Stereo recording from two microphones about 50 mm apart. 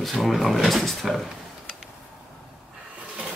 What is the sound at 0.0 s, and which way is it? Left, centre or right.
Cutlery, centre.